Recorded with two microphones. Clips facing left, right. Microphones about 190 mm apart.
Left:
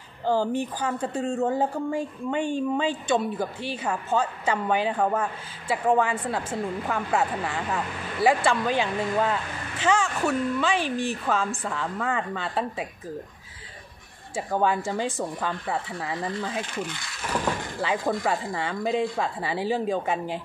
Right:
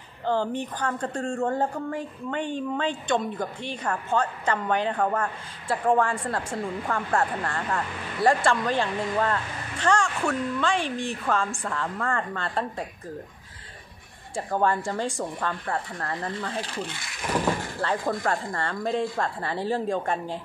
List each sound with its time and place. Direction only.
0.2 s a woman's voice: 10° left (ahead or behind)
14.3 s a woman's voice: 5° left (ahead or behind)
16.6 s speech: 35° right (ahead or behind)
17.8 s a woman's voice: 5° left (ahead or behind)